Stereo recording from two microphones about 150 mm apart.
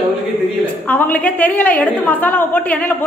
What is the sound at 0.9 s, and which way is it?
A woman's voice, 10° left (ahead or behind).